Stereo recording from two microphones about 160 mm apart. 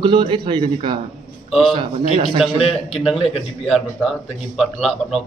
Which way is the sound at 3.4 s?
Centre (ahead or behind).